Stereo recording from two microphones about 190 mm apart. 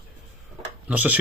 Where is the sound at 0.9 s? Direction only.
10° right (ahead or behind).